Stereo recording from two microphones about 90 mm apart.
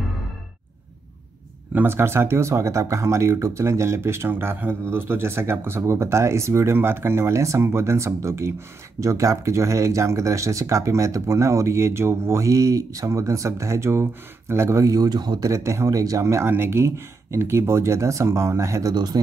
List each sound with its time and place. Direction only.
1.7 s speech: 25° right (ahead or behind); by 15.5 s 50° right (ahead or behind)
15.5 s speech: 35° right (ahead or behind)